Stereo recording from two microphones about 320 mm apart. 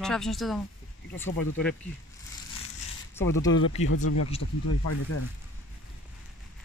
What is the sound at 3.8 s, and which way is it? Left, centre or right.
Speech, left.